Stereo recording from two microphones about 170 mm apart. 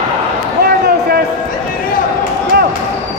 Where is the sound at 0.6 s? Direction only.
65° right (ahead or behind).